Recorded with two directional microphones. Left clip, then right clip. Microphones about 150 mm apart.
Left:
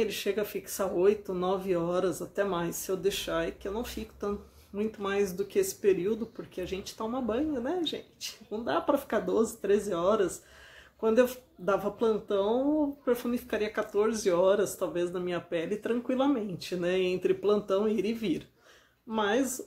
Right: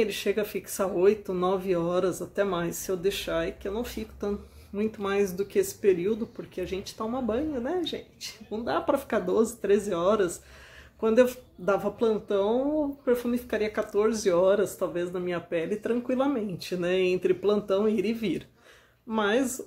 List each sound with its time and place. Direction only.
0.0 s speech: 10° right (ahead or behind)